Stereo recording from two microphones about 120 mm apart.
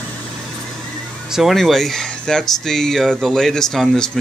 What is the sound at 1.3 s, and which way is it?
Speech, centre (ahead or behind).